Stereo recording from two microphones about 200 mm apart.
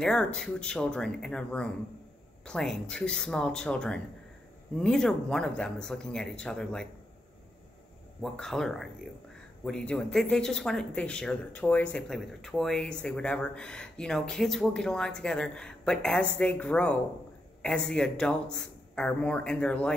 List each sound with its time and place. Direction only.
0.0 s speech: 5° left (ahead or behind)
8.2 s speech: centre (ahead or behind)